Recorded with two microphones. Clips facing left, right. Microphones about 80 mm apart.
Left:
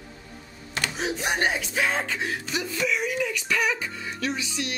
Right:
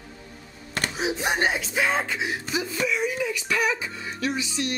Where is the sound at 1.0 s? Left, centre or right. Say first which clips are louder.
Right 2 dB; centre.